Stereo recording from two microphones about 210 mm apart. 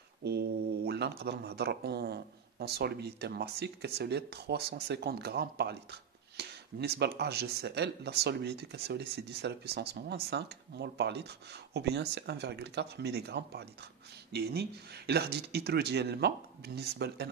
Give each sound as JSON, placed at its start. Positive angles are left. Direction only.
{"t": 0.2, "sound": "speech", "side_deg": -50}